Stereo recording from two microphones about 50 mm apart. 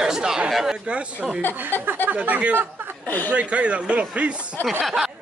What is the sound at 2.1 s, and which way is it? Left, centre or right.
Speech, right.